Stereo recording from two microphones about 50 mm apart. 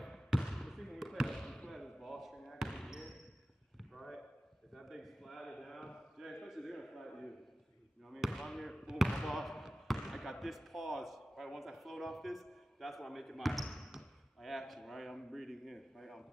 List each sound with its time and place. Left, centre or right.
0.4 s basketball bounce: centre
0.7 s fireworks: centre
1.4 s basketball bounce: centre
1.7 s slam: centre
3.9 s a sound: centre
8.1 s fireworks: centre
8.8 s basketball bounce: centre
13.5 s speech: centre
13.9 s speech: centre